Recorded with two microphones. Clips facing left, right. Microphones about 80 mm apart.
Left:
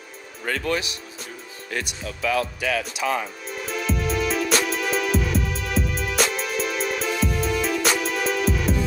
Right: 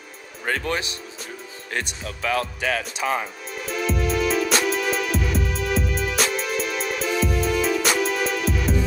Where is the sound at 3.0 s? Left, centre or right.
Right.